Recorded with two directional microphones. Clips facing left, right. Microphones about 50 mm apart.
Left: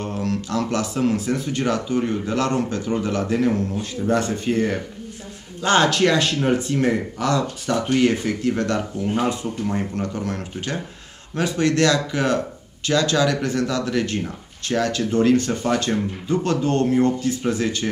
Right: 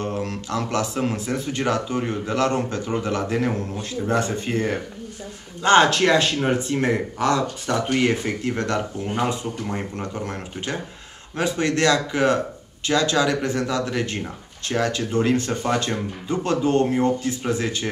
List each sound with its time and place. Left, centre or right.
0.2 s speech: right